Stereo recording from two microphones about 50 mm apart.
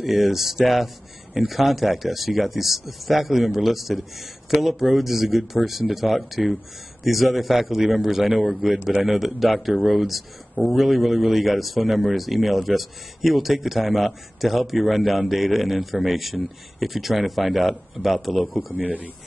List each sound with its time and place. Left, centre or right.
0.0 s speech: centre
18.8 s speech: right